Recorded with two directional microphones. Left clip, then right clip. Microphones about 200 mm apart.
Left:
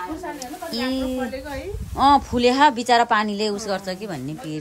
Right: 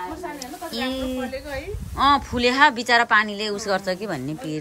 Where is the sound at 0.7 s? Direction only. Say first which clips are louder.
Left 2 dB; 15° left (ahead or behind).